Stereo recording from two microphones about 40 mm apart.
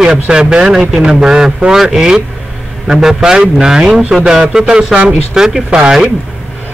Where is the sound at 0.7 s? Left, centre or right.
Centre.